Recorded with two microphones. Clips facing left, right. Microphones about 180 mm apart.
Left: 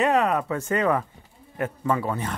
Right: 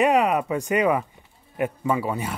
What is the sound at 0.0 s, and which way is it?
Speech, 15° right (ahead or behind).